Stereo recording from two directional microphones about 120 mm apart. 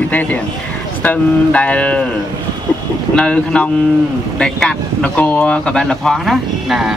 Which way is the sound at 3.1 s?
10° left (ahead or behind).